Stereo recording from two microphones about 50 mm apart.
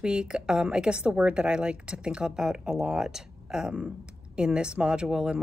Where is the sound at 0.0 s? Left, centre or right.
Centre.